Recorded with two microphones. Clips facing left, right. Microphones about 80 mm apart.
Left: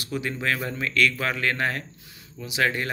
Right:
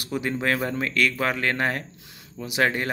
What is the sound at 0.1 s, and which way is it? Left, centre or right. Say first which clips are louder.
Speech: right 2 dB; right.